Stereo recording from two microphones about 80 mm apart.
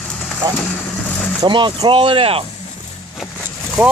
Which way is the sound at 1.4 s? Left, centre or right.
Right.